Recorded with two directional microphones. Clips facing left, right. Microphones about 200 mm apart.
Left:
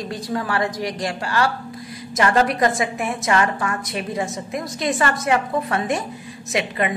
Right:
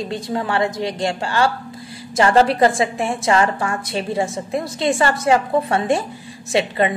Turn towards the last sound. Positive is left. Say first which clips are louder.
# right 4 dB
turn(degrees=-30)  # may be behind; listen again after turning